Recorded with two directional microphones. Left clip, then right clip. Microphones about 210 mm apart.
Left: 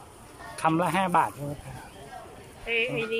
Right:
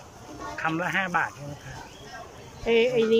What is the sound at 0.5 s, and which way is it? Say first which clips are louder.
Speech: left 2 dB; 20° left (ahead or behind).